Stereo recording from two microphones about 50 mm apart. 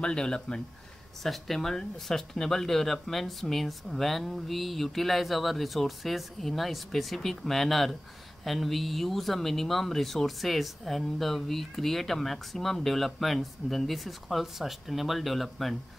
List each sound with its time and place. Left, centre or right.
0.0 s speech: centre